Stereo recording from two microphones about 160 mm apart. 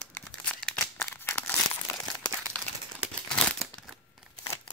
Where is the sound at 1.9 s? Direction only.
15° left (ahead or behind).